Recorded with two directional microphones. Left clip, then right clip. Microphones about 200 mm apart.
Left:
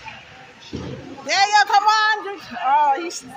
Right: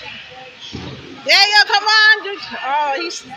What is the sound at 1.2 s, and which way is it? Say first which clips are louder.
A man's voice: right 4 dB; 5° left (ahead or behind).